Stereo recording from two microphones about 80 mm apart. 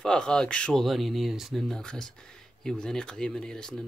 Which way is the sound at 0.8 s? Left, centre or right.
Centre.